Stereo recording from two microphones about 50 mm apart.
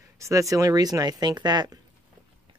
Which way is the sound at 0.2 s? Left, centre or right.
Right.